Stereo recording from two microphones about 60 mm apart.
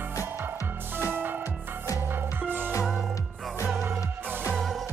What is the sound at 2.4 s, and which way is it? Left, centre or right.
Music, right.